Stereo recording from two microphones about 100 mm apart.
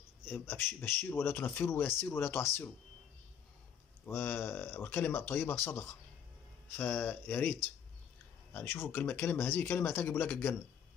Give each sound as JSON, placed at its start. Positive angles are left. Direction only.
{"t": 0.3, "sound": "speech", "side_deg": 25}
{"t": 4.0, "sound": "speech", "side_deg": 25}
{"t": 8.5, "sound": "speech", "side_deg": 20}